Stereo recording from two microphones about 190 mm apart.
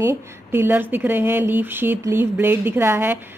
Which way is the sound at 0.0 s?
15° right (ahead or behind).